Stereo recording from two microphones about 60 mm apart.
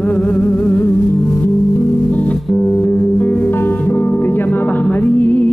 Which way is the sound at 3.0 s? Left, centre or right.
Left.